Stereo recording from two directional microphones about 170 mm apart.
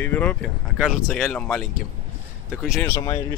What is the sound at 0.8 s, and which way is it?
Speech, 5° right (ahead or behind).